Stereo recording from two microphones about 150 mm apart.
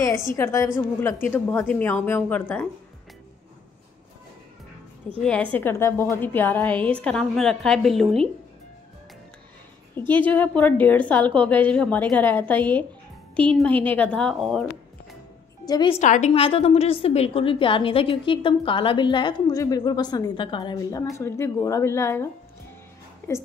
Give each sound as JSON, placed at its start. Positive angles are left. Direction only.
{"t": 0.0, "sound": "a woman's voice", "side_deg": 20}
{"t": 5.2, "sound": "a woman's voice", "side_deg": 10}
{"t": 10.0, "sound": "a woman's voice", "side_deg": 10}
{"t": 15.6, "sound": "a woman's voice", "side_deg": 25}
{"t": 16.0, "sound": "a woman's voice", "side_deg": 55}
{"t": 21.2, "sound": "a woman's voice", "side_deg": 20}